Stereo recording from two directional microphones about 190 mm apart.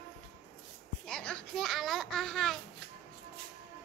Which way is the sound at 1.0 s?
5° left (ahead or behind).